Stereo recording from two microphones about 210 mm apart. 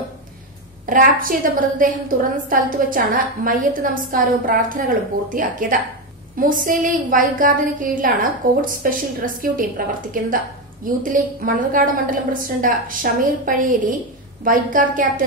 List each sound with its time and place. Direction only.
0.8 s a woman's voice: 40° right (ahead or behind)